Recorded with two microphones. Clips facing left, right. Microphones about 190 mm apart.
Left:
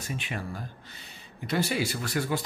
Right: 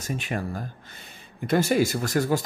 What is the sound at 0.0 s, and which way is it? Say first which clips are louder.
Speech: right 5 dB; 45° right (ahead or behind).